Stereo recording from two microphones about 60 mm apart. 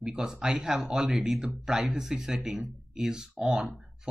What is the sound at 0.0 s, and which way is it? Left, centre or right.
Speech, centre.